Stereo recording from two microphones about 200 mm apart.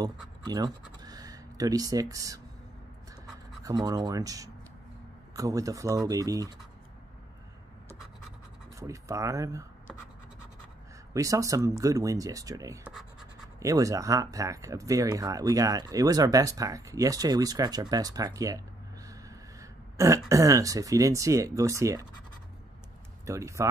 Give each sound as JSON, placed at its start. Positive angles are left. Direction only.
{"t": 0.5, "sound": "speech", "side_deg": -20}
{"t": 3.6, "sound": "speech", "side_deg": -20}
{"t": 8.7, "sound": "speech", "side_deg": -15}
{"t": 11.1, "sound": "speech", "side_deg": -15}
{"t": 23.2, "sound": "speech", "side_deg": -15}